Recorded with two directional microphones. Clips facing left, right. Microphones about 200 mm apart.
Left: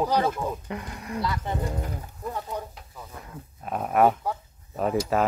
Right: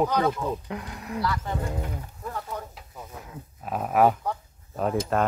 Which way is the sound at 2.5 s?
15° left (ahead or behind).